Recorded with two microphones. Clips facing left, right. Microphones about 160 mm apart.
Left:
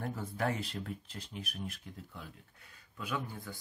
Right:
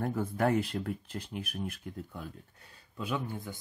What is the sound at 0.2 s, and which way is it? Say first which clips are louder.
Speech: right 8 dB; 55° right (ahead or behind).